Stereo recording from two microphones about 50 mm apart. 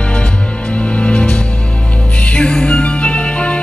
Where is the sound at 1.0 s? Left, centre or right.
Left.